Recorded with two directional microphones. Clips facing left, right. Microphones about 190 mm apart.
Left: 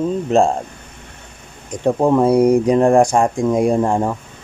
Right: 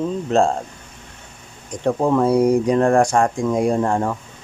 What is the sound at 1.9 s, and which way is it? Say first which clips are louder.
Speech: left 3 dB; 20° left (ahead or behind).